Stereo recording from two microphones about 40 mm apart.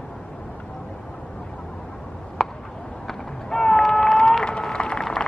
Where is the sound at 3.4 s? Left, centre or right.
Centre.